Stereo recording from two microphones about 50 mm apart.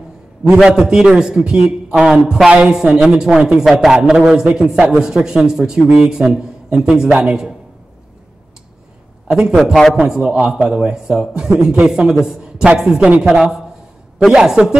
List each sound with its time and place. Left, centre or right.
0.4 s a man's voice: centre
9.3 s a man's voice: centre